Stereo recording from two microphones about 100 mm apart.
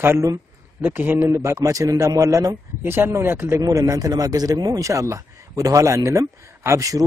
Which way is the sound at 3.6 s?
35° right (ahead or behind).